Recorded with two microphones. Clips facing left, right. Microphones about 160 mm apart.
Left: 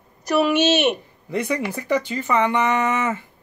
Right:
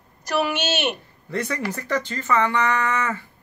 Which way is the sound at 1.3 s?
15° left (ahead or behind).